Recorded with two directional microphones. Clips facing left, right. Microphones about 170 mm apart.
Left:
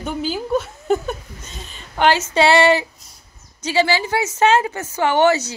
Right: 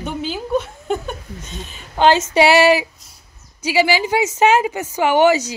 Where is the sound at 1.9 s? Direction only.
20° right (ahead or behind).